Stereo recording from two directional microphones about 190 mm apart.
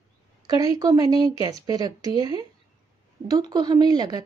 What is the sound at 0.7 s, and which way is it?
A woman's voice, 20° right (ahead or behind).